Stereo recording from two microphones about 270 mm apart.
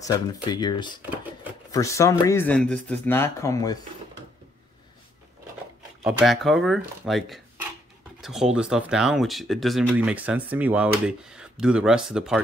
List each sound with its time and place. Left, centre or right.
0.0 s speech: centre
6.0 s speech: centre